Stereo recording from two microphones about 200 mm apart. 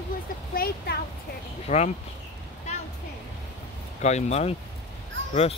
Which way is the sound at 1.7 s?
35° left (ahead or behind).